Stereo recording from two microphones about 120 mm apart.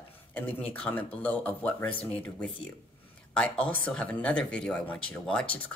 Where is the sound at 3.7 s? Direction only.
10° left (ahead or behind).